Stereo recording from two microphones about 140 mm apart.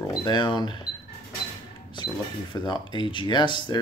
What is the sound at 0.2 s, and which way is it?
Speech, 30° left (ahead or behind).